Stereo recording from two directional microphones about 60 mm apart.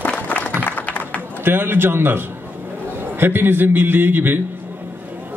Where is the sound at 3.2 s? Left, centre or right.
Right.